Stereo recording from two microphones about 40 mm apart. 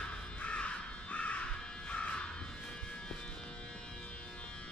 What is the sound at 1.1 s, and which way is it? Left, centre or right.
Music, left.